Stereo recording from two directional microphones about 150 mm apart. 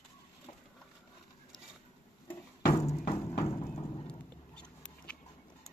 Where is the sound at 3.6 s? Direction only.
30° left (ahead or behind).